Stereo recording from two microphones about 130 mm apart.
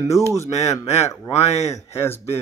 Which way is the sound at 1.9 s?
20° left (ahead or behind).